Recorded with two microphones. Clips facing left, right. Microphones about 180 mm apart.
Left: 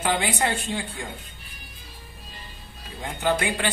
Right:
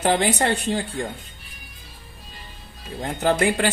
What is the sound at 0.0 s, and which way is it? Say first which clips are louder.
Speech: right 4 dB; 40° right (ahead or behind).